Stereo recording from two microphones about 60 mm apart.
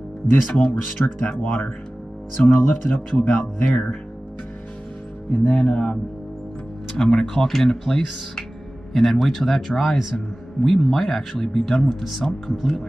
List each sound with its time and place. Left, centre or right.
0.5 s speech: centre
5.4 s speech: centre